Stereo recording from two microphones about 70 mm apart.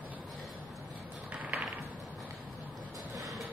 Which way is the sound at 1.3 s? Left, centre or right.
Centre.